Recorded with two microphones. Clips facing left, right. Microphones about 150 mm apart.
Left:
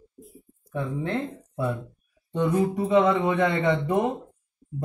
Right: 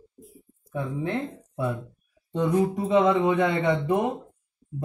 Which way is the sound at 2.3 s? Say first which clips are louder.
Even; 15° right (ahead or behind).